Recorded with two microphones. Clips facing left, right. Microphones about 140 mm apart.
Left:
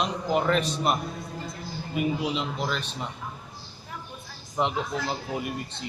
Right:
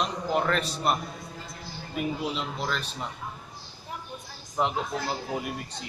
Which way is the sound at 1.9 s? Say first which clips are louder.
Left 3 dB; 5° left (ahead or behind).